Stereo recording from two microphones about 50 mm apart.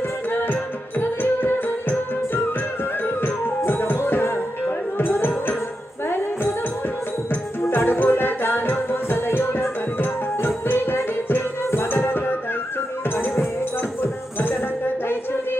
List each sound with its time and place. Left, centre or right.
0.5 s music: left
3.7 s music: left
7.7 s music: left